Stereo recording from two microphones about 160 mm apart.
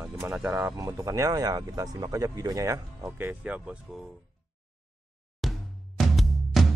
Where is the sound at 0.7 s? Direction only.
20° right (ahead or behind).